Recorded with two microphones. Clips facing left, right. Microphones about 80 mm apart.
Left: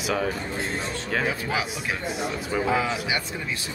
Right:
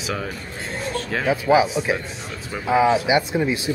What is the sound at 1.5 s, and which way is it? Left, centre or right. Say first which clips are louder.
Speech: right 11 dB; centre.